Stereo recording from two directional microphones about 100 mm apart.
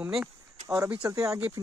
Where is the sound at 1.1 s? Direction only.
30° right (ahead or behind).